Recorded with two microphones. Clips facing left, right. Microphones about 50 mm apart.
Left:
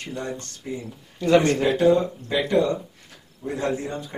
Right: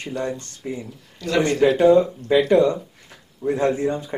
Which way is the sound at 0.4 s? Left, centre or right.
Right.